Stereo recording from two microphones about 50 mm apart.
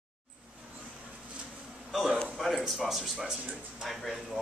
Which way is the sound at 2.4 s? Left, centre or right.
Centre.